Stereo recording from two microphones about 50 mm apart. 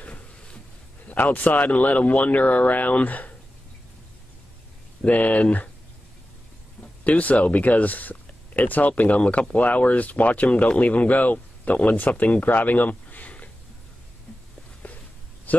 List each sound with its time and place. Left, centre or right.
1.0 s speech: left
5.0 s speech: left
7.1 s speech: left
10.5 s speech: left
14.8 s a sound: left